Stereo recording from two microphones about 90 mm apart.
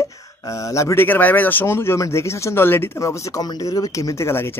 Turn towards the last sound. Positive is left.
turn(degrees=30)  # may be behind; listen again after turning